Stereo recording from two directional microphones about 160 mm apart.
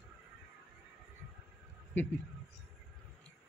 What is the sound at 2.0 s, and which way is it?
Speech, 10° left (ahead or behind).